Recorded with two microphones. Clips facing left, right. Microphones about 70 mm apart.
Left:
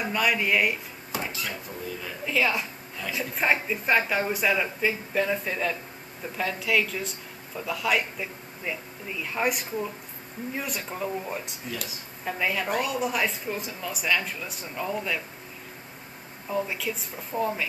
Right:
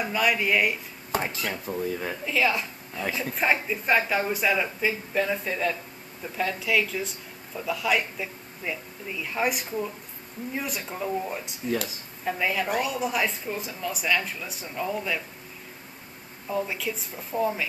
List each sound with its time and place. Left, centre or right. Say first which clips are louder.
0.0 s speech: right 1 dB; centre
1.1 s dishes: right 4 dB; right
1.5 s speech: right 6 dB; right
2.2 s speech: even; centre
16.4 s speech: even; centre